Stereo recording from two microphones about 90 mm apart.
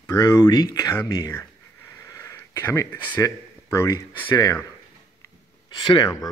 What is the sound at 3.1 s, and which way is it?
Speech, 35° left (ahead or behind).